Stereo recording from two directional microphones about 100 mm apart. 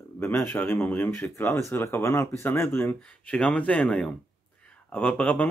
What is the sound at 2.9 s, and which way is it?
Speech, 10° left (ahead or behind).